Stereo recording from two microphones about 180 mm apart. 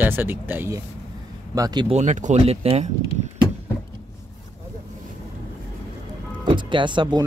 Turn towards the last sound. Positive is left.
turn(degrees=-25)  # may be behind; listen again after turning